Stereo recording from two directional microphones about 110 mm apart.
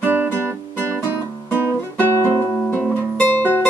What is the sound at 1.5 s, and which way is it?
Music, 20° left (ahead or behind).